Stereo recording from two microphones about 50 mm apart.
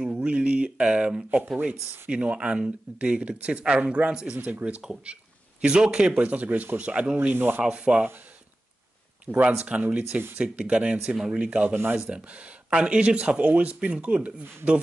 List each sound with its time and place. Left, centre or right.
0.0 s speech: right
4.4 s speech: right; by 6.2 s centre
6.2 s speech: right
7.3 s speech: right
7.6 s speech: right
9.2 s speech: right
11.7 s speech: right
12.6 s speech: right